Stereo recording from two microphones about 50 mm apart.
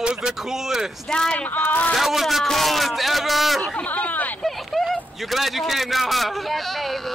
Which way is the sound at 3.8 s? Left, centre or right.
Left.